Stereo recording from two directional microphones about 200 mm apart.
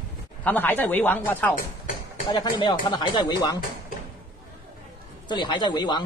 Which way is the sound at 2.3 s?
20° left (ahead or behind).